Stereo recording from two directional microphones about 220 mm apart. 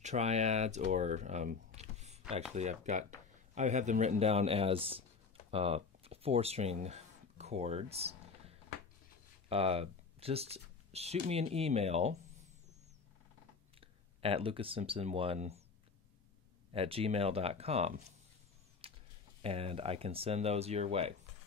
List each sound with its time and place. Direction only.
0.0 s speech: 30° right (ahead or behind)
5.5 s a sound: 25° right (ahead or behind)
9.5 s speech: 25° right (ahead or behind)
13.7 s speech: 25° right (ahead or behind)
16.7 s speech: 25° right (ahead or behind)
18.8 s a sound: 25° right (ahead or behind)
19.4 s speech: 25° right (ahead or behind)